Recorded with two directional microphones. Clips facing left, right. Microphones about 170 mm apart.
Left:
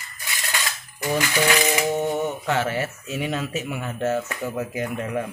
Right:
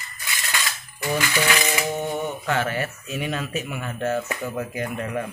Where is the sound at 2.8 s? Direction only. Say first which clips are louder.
Left 1 dB; 20° left (ahead or behind).